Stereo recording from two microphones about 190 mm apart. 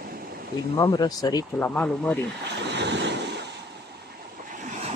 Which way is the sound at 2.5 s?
65° right (ahead or behind).